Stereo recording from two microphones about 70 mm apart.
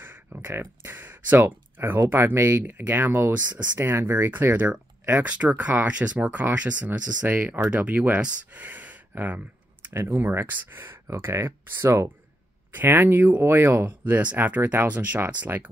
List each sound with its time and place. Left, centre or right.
0.0 s speech: right
8.5 s a sound: right
10.0 s speech: right
12.7 s speech: right